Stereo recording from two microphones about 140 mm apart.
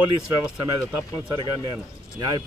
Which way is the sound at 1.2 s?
25° right (ahead or behind).